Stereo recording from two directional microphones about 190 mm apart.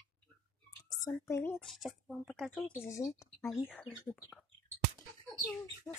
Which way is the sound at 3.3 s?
5° left (ahead or behind).